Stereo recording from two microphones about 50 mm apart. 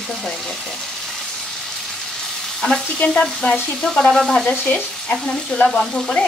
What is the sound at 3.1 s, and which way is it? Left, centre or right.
Frying, centre.